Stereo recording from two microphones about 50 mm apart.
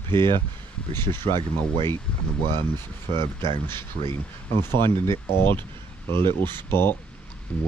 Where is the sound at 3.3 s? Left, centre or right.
Left.